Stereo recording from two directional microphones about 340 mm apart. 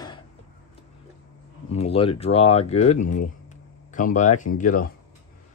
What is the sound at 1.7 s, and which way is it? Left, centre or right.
Speech, centre.